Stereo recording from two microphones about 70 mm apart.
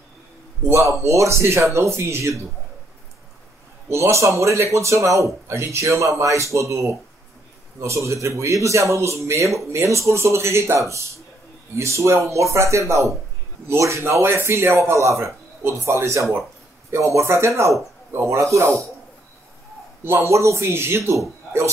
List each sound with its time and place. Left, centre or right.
0.7 s speech: right
3.9 s speech: right
20.0 s speech: right